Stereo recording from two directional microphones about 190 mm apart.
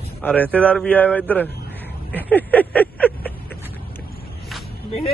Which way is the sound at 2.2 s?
10° left (ahead or behind).